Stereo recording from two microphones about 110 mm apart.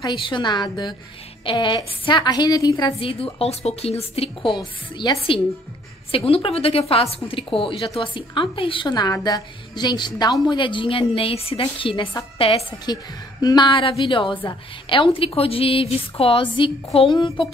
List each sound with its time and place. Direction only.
0.0 s a woman's voice: 45° left (ahead or behind)
3.0 s speech: 55° left (ahead or behind)
5.0 s a woman's voice: 35° left (ahead or behind)
6.1 s speech: 60° left (ahead or behind)
8.8 s a woman's voice: 40° left (ahead or behind); by 12.6 s 55° left (ahead or behind)
12.8 s a woman's voice: 35° left (ahead or behind); by 17.1 s 60° left (ahead or behind)
17.1 s a woman's voice: 45° left (ahead or behind)